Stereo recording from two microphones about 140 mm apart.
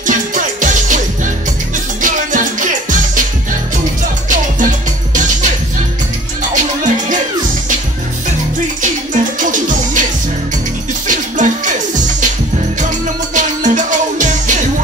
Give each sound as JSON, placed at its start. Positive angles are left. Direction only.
{"t": 0.0, "sound": "music", "side_deg": -70}
{"t": 4.3, "sound": "music", "side_deg": -65}
{"t": 6.5, "sound": "music", "side_deg": -65}
{"t": 8.8, "sound": "music", "side_deg": -70}
{"t": 11.1, "sound": "music", "side_deg": -65}
{"t": 13.3, "sound": "music", "side_deg": -65}